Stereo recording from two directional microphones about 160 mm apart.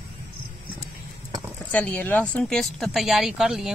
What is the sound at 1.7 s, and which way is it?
Speech, 10° left (ahead or behind).